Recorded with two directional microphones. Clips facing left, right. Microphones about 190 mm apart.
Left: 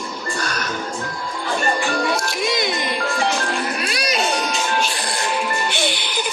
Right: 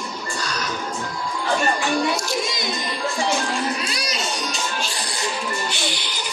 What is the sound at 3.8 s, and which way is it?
Music, 60° left (ahead or behind).